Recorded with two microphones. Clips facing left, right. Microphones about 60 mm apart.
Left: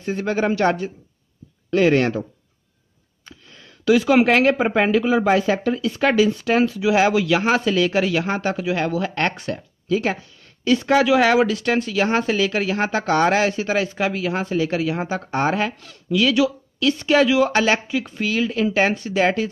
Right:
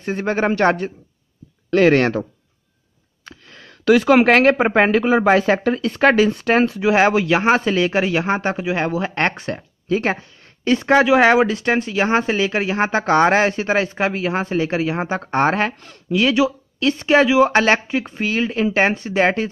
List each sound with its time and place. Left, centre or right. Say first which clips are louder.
0.0 s a man's voice: right 2 dB; right
1.7 s speech: right 3 dB; right
3.3 s speech: right 4 dB; right